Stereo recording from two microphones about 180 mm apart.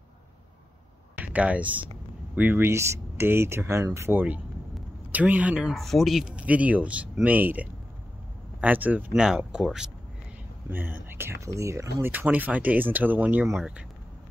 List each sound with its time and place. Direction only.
1.1 s speech: 10° right (ahead or behind)